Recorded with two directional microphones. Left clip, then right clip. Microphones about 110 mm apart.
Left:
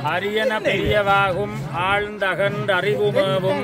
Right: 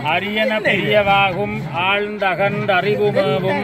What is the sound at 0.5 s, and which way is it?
Speech, 30° left (ahead or behind).